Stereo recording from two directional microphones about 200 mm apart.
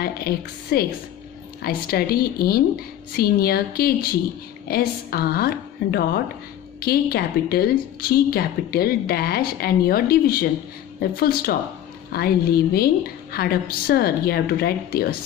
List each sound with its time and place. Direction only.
0.0 s a woman's voice: 50° left (ahead or behind)